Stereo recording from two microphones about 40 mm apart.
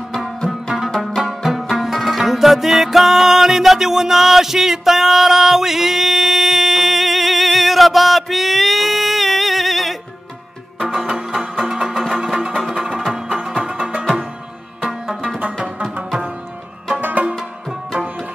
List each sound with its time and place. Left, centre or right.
0.5 s music: centre
10.8 s music: centre
14.8 s tabla: centre
15.2 s music: right
17.0 s music: right